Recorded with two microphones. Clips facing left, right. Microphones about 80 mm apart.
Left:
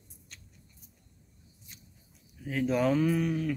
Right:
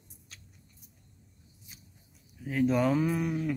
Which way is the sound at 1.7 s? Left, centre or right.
Centre.